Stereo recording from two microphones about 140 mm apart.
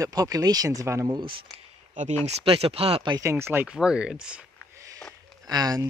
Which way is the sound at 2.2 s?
45° right (ahead or behind).